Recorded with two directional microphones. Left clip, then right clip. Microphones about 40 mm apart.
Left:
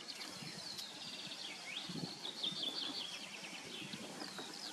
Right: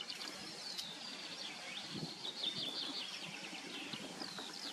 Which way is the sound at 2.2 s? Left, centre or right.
Centre.